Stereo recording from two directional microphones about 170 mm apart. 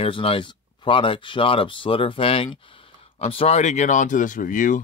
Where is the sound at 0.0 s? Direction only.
30° left (ahead or behind).